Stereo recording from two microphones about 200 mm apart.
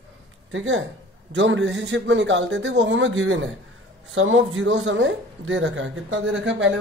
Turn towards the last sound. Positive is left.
turn(degrees=-75)  # may be behind; listen again after turning